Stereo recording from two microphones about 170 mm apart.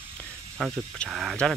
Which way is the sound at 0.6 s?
5° left (ahead or behind).